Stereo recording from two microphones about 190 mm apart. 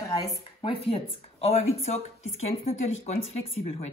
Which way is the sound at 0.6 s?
30° left (ahead or behind).